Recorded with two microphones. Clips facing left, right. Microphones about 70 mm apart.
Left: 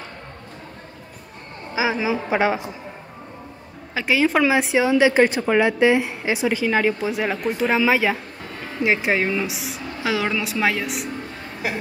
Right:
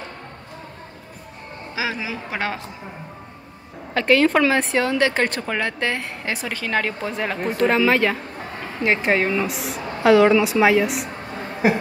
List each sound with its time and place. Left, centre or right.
1.8 s speech: left
3.9 s a woman's voice: centre
11.6 s a sound: right